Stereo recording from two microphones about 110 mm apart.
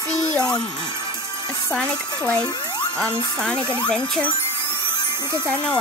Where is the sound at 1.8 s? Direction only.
10° left (ahead or behind).